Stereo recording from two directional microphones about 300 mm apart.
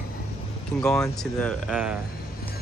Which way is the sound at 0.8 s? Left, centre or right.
Centre.